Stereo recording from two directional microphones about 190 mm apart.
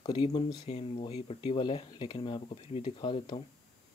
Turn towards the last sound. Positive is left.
turn(degrees=25)  # may be behind; listen again after turning